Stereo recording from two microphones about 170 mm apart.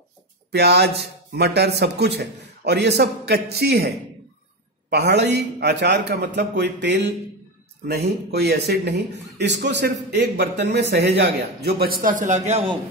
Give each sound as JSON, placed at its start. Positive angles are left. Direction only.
{"t": 0.5, "sound": "speech", "side_deg": -75}
{"t": 4.8, "sound": "a man's voice", "side_deg": -80}
{"t": 7.8, "sound": "a man's voice", "side_deg": -80}